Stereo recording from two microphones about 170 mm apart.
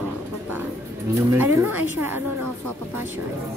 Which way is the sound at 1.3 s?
15° right (ahead or behind).